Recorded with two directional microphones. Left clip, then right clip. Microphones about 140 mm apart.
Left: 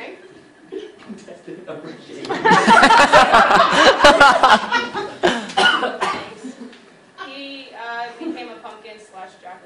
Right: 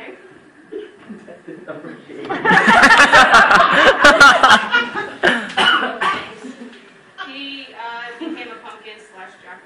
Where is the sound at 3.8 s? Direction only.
20° left (ahead or behind).